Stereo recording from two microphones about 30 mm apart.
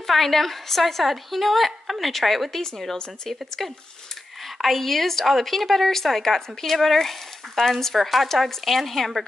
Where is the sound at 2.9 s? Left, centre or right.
Centre.